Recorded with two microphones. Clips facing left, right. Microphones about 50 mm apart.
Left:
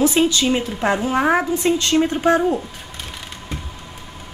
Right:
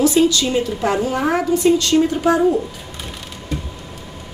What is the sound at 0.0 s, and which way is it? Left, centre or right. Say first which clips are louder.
A woman's voice: right 2 dB; left.